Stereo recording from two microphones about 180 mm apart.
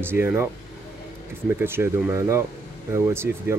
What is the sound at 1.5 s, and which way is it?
Speech, 10° right (ahead or behind).